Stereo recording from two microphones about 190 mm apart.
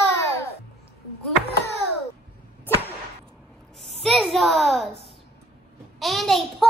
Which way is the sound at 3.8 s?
Centre (ahead or behind).